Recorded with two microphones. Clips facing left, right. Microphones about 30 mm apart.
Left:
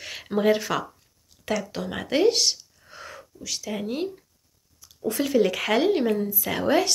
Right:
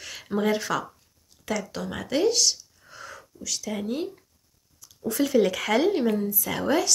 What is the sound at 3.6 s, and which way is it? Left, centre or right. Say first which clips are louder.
Speech: left 1 dB; centre.